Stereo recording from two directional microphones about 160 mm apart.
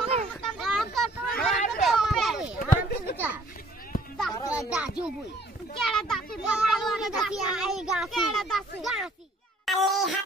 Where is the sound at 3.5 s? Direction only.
65° left (ahead or behind).